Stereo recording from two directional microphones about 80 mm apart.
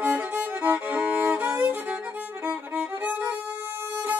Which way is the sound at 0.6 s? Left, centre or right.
Right.